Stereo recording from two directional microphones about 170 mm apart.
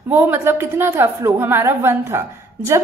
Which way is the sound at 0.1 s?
10° right (ahead or behind).